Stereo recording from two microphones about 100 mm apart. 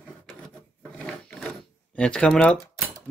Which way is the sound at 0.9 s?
10° left (ahead or behind).